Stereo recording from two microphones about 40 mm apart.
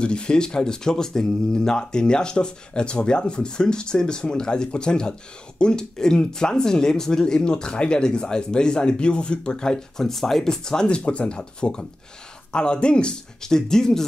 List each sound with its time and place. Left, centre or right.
0.0 s speech: left